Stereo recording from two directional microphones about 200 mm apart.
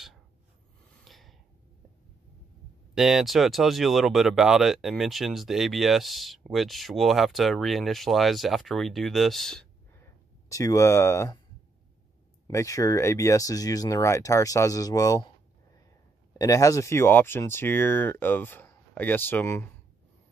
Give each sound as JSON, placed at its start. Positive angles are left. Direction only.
{"t": 1.0, "sound": "gasp", "side_deg": 0}
{"t": 2.9, "sound": "speech", "side_deg": 0}
{"t": 10.5, "sound": "speech", "side_deg": 15}
{"t": 12.4, "sound": "speech", "side_deg": 15}
{"t": 16.3, "sound": "speech", "side_deg": 15}